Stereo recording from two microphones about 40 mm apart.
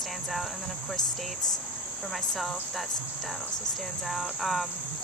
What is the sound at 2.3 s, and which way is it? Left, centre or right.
Speech, centre.